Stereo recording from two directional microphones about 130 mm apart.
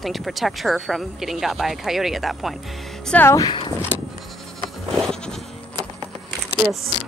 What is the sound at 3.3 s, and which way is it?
Speech, 30° left (ahead or behind).